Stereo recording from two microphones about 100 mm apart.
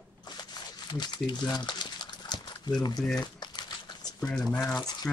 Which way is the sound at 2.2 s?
45° left (ahead or behind).